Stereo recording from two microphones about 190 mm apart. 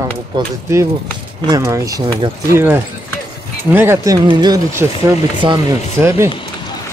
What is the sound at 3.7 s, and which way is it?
Speech, 10° right (ahead or behind).